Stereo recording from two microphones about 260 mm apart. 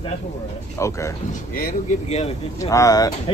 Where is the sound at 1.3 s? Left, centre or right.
Left.